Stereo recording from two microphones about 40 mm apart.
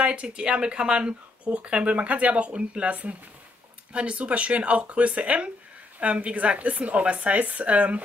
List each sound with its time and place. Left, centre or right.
0.0 s speech: right